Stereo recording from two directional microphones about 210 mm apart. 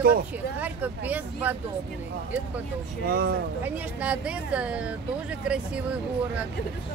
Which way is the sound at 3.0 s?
45° right (ahead or behind).